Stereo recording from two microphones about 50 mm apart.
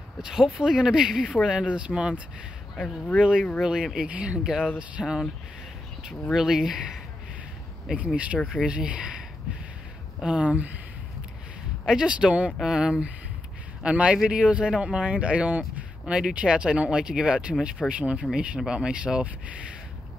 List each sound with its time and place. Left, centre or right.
0.2 s speech: centre
4.1 s speech: right
4.4 s speech: centre
5.0 s speech: centre
6.3 s speech: centre
7.9 s speech: right
10.2 s speech: centre
11.8 s speech: centre
13.8 s speech: right
18.7 s speech: centre